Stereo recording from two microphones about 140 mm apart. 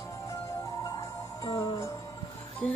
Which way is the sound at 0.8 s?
25° left (ahead or behind).